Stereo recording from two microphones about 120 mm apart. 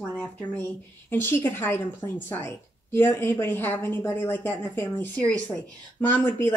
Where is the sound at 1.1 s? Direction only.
20° left (ahead or behind).